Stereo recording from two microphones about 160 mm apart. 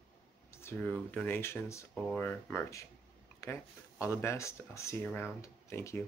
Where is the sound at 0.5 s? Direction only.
15° left (ahead or behind).